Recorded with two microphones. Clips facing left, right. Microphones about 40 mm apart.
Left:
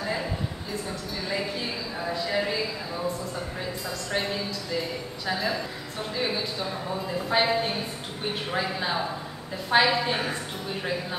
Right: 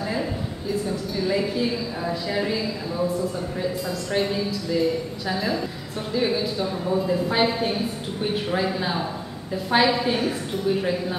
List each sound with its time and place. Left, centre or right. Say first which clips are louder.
0.8 s a woman's voice: right 7 dB; centre